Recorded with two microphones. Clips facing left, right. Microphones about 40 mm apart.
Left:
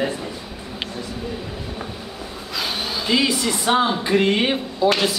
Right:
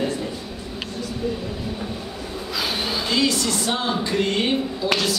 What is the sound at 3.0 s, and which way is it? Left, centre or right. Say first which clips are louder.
A woman's voice: left 3 dB; centre.